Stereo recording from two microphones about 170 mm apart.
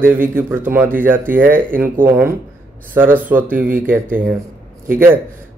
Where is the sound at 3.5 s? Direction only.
55° right (ahead or behind).